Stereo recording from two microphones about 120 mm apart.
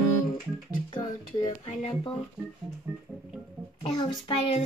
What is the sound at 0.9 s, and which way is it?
Speech, 40° left (ahead or behind).